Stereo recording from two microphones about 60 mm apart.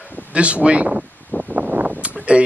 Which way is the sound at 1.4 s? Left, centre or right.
Right.